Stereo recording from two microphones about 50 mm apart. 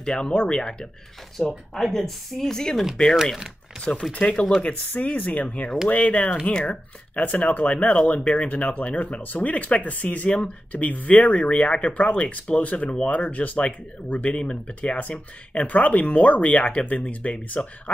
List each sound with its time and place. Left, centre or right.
0.0 s speech: centre
3.8 s speech: centre
14.4 s speech: centre
14.8 s speech: left